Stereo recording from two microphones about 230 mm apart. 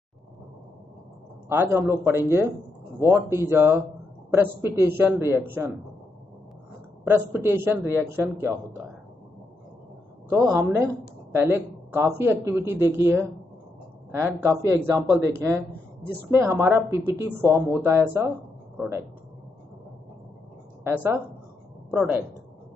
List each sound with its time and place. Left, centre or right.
1.5 s speech: centre
7.1 s speech: centre
10.5 s speech: centre
20.8 s a woman's voice: centre